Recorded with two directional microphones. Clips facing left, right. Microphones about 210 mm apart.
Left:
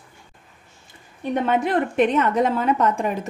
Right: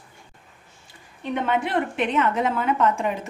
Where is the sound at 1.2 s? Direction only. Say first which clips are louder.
Left 3 dB; 40° left (ahead or behind).